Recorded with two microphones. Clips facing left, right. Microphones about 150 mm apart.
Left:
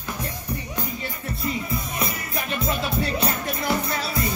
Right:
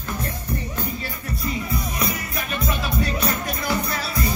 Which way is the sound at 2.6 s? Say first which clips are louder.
Right 1 dB; 30° left (ahead or behind).